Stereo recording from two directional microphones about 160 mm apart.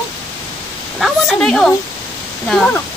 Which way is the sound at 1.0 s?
Centre (ahead or behind).